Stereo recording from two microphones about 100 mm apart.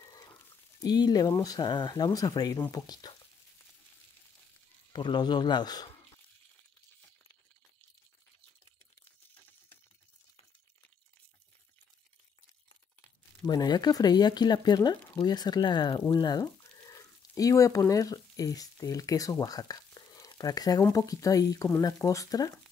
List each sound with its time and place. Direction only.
0.0 s a sound: 40° left (ahead or behind)
2.1 s speech: 40° left (ahead or behind)
4.9 s speech: 50° left (ahead or behind)
13.5 s speech: 45° left (ahead or behind)
16.1 s frying: 45° left (ahead or behind)
17.4 s speech: 35° left (ahead or behind)